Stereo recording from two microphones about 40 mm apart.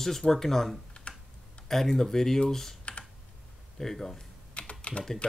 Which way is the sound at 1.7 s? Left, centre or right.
Centre.